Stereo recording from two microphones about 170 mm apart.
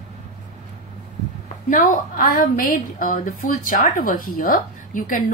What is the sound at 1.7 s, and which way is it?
A woman's voice, 50° left (ahead or behind).